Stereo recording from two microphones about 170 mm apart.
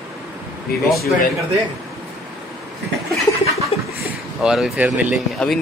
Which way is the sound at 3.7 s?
35° left (ahead or behind).